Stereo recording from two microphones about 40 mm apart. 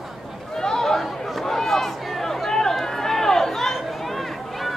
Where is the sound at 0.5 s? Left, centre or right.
Centre.